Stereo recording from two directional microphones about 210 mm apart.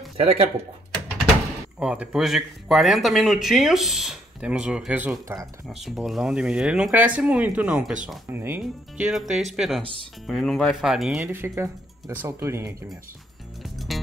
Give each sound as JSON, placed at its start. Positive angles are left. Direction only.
{"t": 0.2, "sound": "speech", "side_deg": -30}
{"t": 1.8, "sound": "speech", "side_deg": -5}
{"t": 5.7, "sound": "speech", "side_deg": 0}
{"t": 13.6, "sound": "music", "side_deg": 0}